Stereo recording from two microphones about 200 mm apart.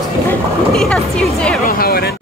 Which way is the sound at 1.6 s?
50° left (ahead or behind).